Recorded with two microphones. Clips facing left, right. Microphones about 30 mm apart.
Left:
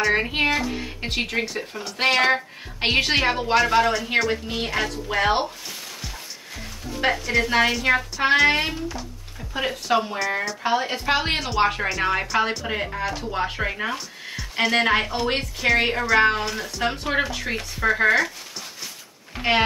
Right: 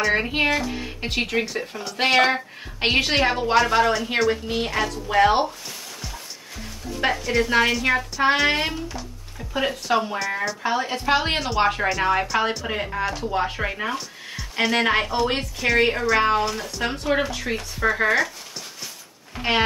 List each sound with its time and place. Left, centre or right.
0.0 s speech: centre
7.0 s speech: centre
10.6 s speech: centre
11.1 s speech: centre
19.3 s a sound: centre